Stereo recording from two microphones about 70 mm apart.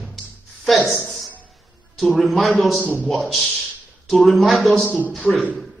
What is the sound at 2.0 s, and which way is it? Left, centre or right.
Speech, centre.